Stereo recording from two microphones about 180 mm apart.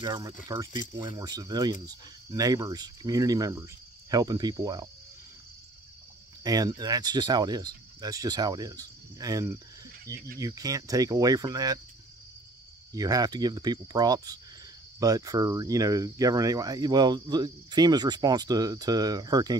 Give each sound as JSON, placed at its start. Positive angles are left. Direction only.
{"t": 0.0, "sound": "speech", "side_deg": -20}
{"t": 6.4, "sound": "speech", "side_deg": -20}
{"t": 10.1, "sound": "speech", "side_deg": -60}
{"t": 10.4, "sound": "speech", "side_deg": -20}
{"t": 12.9, "sound": "speech", "side_deg": -20}